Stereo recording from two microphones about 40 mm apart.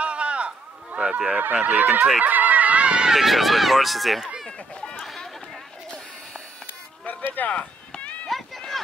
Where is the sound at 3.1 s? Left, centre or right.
Centre.